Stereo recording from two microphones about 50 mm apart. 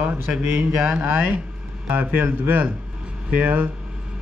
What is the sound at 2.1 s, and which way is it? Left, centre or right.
Speech, right.